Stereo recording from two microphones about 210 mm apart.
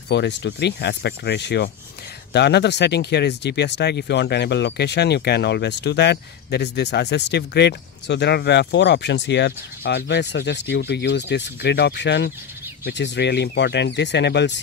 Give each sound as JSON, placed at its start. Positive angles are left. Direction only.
{"t": 0.1, "sound": "speech", "side_deg": 55}